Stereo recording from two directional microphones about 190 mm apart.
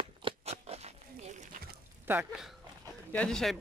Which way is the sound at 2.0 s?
10° right (ahead or behind).